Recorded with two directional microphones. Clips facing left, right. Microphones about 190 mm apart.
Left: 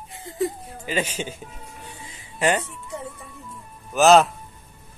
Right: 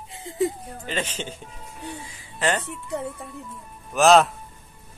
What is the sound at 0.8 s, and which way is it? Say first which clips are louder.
Speech: left 3 dB; 10° left (ahead or behind).